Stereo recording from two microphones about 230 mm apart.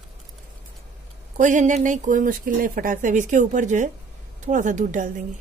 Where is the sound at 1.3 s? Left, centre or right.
Right.